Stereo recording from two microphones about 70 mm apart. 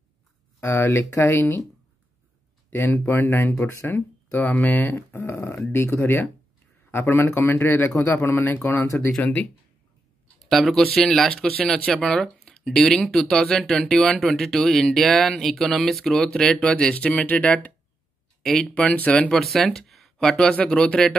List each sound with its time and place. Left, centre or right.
0.6 s speech: left
2.7 s speech: left
10.4 s speech: centre
18.4 s speech: centre
19.2 s speech: centre